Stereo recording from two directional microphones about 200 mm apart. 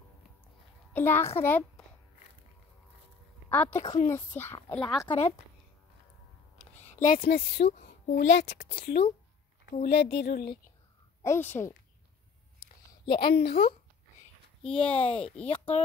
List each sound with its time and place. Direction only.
0.9 s a child's voice: 10° left (ahead or behind)
3.4 s a woman's voice: 10° left (ahead or behind)
3.8 s a woman's voice: 35° left (ahead or behind)
4.1 s a child's voice: 10° left (ahead or behind)
5.0 s a woman's voice: 30° left (ahead or behind)
6.8 s speech: 40° left (ahead or behind)
7.8 s speech: 60° left (ahead or behind)
11.2 s a child's voice: 10° left (ahead or behind)
12.5 s a sound: 25° left (ahead or behind)
13.2 s speech: 50° left (ahead or behind)
14.8 s speech: 30° left (ahead or behind)